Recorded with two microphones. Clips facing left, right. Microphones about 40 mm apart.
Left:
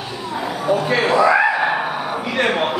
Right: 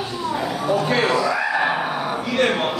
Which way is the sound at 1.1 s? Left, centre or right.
Left.